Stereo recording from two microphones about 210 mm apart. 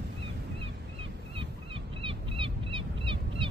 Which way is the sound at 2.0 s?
25° right (ahead or behind).